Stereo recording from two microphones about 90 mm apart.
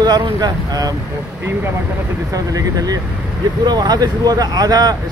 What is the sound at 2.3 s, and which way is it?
Speech, 40° right (ahead or behind).